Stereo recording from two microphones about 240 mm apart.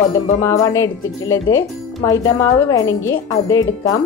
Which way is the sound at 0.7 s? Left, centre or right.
Centre.